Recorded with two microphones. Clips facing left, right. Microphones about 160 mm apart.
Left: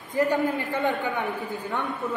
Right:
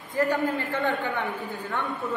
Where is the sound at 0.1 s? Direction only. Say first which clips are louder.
Left 1 dB; 20° left (ahead or behind).